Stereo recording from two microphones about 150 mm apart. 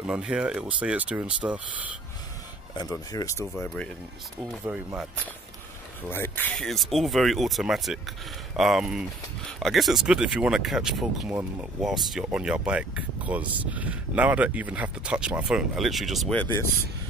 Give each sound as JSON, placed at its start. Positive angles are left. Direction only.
{"t": 0.0, "sound": "speech", "side_deg": -5}
{"t": 2.7, "sound": "speech", "side_deg": 25}
{"t": 4.6, "sound": "speech", "side_deg": -10}
{"t": 6.0, "sound": "speech", "side_deg": 15}